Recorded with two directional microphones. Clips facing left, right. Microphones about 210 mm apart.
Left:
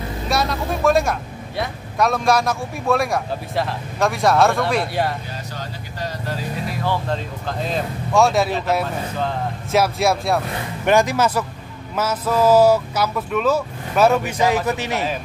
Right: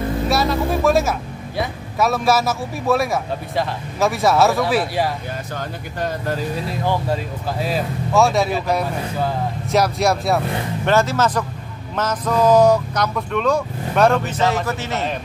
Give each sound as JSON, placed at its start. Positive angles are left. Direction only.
{"t": 0.3, "sound": "speech", "side_deg": 0}
{"t": 5.6, "sound": "speech", "side_deg": -50}
{"t": 6.7, "sound": "speech", "side_deg": -15}
{"t": 10.9, "sound": "speech", "side_deg": 15}